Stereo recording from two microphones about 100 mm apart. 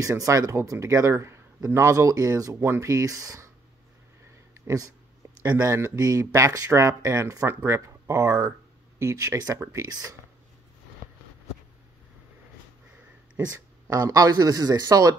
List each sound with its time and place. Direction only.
0.0 s speech: 35° right (ahead or behind)
4.6 s speech: 35° right (ahead or behind)
9.8 s speech: 40° right (ahead or behind)
13.4 s speech: 20° right (ahead or behind)
13.8 s speech: 35° right (ahead or behind)